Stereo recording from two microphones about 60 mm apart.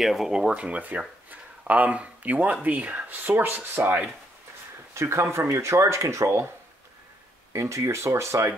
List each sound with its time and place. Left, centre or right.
0.0 s speech: centre; by 4.0 s right
4.9 s speech: right
7.5 s speech: right